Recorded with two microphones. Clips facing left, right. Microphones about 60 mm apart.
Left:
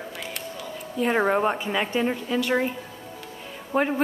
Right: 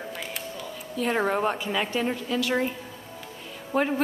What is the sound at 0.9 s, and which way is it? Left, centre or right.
A woman's voice, centre.